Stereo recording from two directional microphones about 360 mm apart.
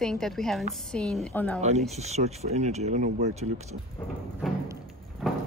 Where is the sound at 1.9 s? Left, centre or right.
Centre.